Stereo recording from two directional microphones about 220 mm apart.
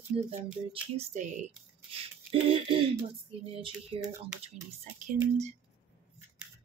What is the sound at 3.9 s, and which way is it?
Speech, 25° right (ahead or behind).